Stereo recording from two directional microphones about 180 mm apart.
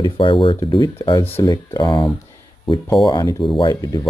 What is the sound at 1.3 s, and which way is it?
Speech, 15° left (ahead or behind).